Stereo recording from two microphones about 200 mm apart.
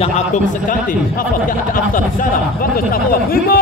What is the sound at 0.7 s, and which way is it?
Speech, 45° left (ahead or behind).